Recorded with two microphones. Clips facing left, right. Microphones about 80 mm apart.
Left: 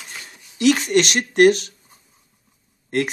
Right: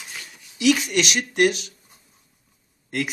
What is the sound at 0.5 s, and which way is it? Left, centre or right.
Speech, left.